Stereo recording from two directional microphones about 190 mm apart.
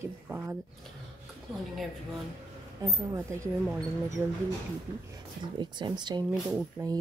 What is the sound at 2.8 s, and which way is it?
Speech, 15° right (ahead or behind).